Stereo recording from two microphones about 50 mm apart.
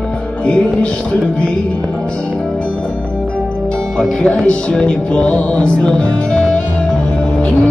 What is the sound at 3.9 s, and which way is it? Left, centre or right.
Music, centre.